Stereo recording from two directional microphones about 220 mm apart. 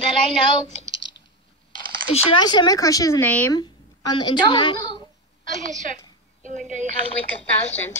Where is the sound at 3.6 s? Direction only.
20° left (ahead or behind).